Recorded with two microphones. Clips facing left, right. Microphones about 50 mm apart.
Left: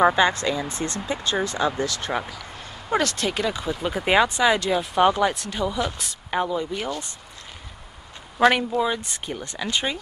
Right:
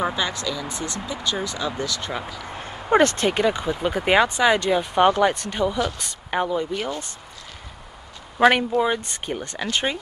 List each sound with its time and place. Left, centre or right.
0.0 s speech: left
1.9 s speech: left
2.2 s speech: right
5.9 s a woman's voice: centre
6.3 s speech: centre
8.4 s speech: centre